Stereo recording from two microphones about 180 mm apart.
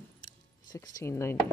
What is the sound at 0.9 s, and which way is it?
Speech, 15° left (ahead or behind).